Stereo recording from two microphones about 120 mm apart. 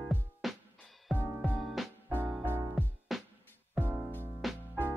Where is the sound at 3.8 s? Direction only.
15° right (ahead or behind).